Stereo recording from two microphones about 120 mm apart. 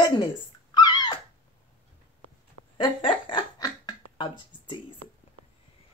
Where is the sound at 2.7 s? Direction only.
45° left (ahead or behind).